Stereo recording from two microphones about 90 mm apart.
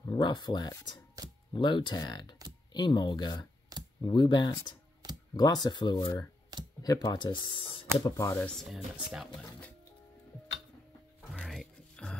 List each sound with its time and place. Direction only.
0.0 s speech: 60° left (ahead or behind)
1.2 s speech: 40° right (ahead or behind)
1.5 s speech: 60° left (ahead or behind)
5.3 s speech: 45° left (ahead or behind); by 7.8 s 65° left (ahead or behind)
8.0 s speech: 35° left (ahead or behind)
8.5 s speech: 5° left (ahead or behind)
8.7 s speech: 10° right (ahead or behind)
11.4 s music: 5° left (ahead or behind)